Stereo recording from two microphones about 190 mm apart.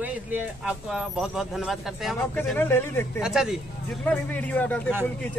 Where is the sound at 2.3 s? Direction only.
10° left (ahead or behind).